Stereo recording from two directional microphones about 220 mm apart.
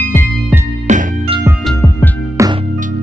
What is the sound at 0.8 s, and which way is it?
Music, 35° right (ahead or behind).